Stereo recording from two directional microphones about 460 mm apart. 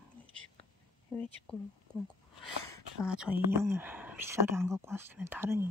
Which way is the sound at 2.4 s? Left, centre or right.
Centre.